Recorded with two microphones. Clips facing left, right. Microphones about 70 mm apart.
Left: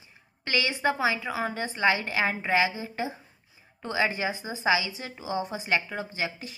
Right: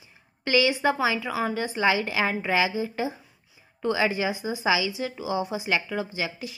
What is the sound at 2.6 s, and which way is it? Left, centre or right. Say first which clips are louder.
A woman's voice: right 2 dB; left.